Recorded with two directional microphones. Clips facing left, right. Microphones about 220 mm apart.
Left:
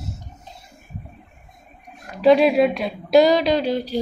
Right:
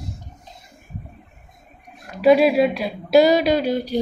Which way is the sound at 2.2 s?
5° right (ahead or behind).